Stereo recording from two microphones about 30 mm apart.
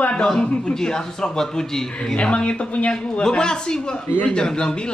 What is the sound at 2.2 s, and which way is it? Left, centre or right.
Speech, left.